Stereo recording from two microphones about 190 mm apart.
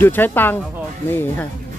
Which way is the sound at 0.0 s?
10° left (ahead or behind).